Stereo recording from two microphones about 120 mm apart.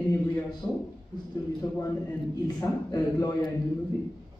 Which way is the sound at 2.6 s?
30° left (ahead or behind).